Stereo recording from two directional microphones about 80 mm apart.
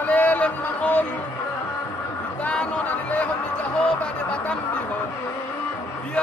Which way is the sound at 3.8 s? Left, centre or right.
Centre.